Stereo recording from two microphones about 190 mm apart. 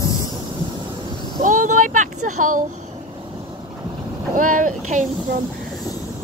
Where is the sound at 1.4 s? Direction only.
45° right (ahead or behind).